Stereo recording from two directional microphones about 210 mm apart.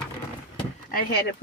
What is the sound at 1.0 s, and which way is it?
Speech, 45° left (ahead or behind).